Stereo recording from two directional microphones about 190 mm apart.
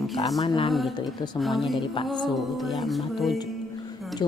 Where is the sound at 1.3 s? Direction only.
Centre (ahead or behind).